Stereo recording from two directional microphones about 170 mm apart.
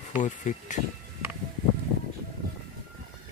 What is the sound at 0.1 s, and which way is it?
Speech, 45° left (ahead or behind).